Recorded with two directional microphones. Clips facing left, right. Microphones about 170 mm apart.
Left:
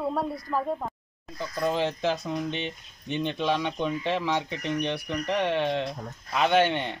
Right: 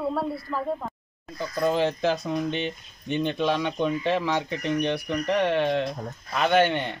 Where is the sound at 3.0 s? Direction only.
10° right (ahead or behind).